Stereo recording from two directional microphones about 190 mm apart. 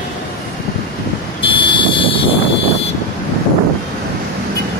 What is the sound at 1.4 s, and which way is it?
Vehicle, 25° left (ahead or behind).